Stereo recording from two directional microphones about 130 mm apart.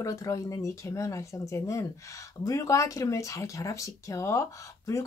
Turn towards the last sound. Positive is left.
turn(degrees=25)  # may be behind; listen again after turning